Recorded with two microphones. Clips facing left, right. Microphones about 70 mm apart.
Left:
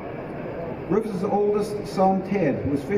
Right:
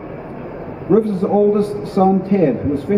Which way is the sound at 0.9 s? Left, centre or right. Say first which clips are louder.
Right 8 dB; centre.